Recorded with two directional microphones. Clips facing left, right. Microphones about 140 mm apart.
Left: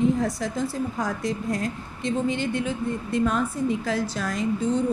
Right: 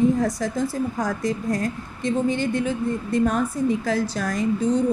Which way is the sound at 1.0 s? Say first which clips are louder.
Right 3 dB; 40° right (ahead or behind).